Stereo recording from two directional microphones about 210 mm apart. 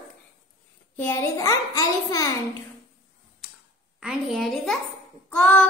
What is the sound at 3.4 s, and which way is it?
Quack, 5° right (ahead or behind).